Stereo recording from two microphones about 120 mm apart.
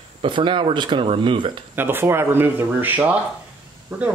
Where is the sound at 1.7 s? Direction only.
20° right (ahead or behind).